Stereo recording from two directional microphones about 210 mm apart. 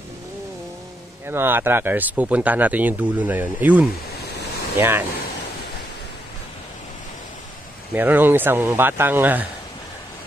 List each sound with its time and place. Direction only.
1.2 s speech: 10° right (ahead or behind)
4.3 s waves: 50° left (ahead or behind)
4.7 s speech: 10° right (ahead or behind)
7.9 s speech: 10° right (ahead or behind)